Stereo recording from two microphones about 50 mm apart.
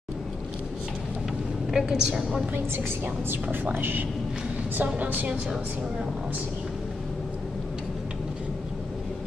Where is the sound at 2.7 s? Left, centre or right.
Right.